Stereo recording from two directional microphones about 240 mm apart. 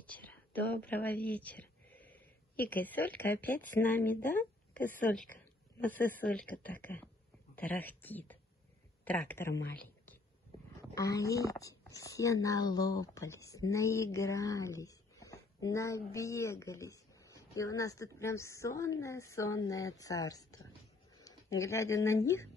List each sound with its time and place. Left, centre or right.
0.0 s speech: centre
9.5 s speech: left
10.8 s a sound: centre
11.3 s speech: centre